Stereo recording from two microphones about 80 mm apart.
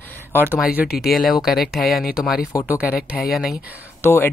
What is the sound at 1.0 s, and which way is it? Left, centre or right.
Speech, centre.